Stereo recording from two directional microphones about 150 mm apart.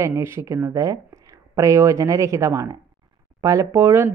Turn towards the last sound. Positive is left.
turn(degrees=-15)  # may be behind; listen again after turning